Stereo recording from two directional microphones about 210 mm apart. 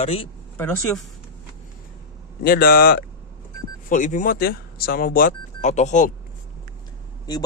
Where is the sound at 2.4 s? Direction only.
45° left (ahead or behind).